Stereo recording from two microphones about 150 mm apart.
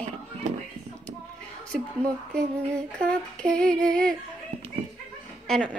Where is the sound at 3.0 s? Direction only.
5° left (ahead or behind).